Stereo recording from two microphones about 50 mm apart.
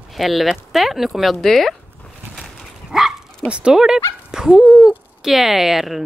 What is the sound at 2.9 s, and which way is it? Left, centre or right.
Dog, centre.